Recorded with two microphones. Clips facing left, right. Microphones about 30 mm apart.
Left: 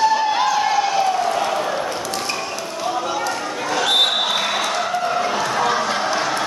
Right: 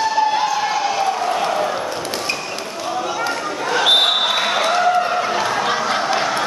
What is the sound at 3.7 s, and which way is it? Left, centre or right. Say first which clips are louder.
Basketball bounce: right 3 dB; right.